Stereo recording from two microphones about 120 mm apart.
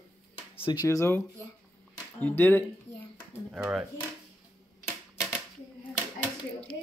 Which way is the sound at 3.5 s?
10° right (ahead or behind).